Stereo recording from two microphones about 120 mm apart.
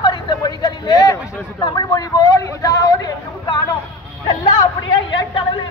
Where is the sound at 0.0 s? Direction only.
40° left (ahead or behind).